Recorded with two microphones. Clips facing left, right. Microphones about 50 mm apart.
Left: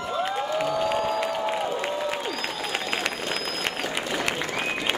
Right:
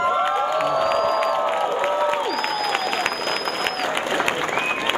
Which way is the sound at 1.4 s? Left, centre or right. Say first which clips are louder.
Right 5 dB; right.